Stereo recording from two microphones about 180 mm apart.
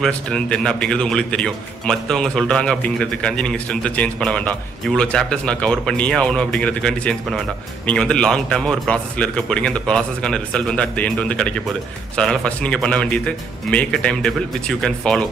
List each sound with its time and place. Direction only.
0.0 s a man's voice: 5° left (ahead or behind)